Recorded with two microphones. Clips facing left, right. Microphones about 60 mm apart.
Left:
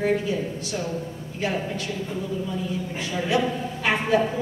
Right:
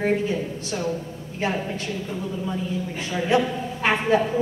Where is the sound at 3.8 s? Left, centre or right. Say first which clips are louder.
Right 2 dB; right.